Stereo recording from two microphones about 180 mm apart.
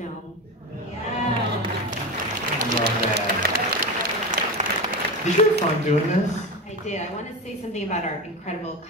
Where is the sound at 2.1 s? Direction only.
50° right (ahead or behind).